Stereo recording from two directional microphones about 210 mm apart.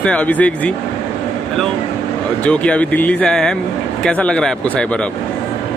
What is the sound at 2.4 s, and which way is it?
Speech, 5° left (ahead or behind).